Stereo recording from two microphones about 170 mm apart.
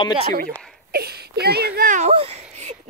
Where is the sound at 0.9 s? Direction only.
65° right (ahead or behind); by 2.1 s 50° right (ahead or behind).